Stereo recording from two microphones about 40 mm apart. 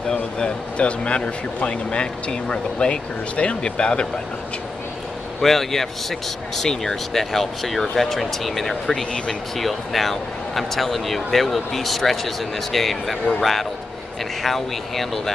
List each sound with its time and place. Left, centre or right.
0.1 s speech: left
5.4 s speech: centre